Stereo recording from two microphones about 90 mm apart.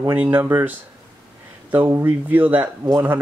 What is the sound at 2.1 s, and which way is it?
Speech, 20° right (ahead or behind).